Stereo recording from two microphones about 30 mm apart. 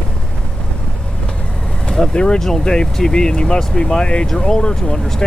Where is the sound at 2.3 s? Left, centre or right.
Centre.